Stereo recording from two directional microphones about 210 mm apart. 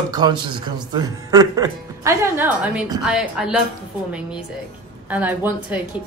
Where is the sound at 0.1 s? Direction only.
20° right (ahead or behind); by 3.6 s 5° right (ahead or behind).